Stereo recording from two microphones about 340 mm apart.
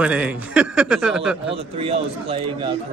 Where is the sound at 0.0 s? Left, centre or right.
Centre.